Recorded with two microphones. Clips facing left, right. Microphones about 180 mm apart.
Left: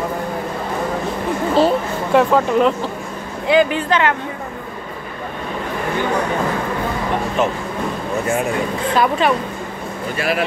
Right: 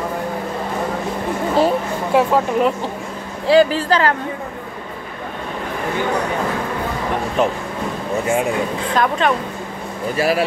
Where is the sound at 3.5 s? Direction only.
35° right (ahead or behind).